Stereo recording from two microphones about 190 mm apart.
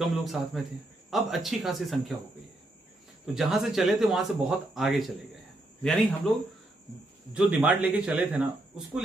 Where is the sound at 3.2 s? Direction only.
Centre (ahead or behind).